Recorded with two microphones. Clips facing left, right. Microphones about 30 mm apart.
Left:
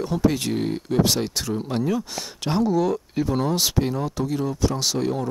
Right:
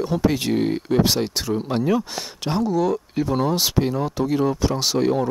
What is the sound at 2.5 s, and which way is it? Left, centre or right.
Speech, centre.